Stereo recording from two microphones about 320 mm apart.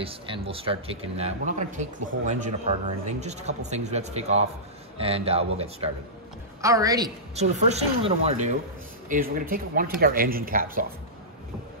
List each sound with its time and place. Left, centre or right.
0.0 s a woman's voice: centre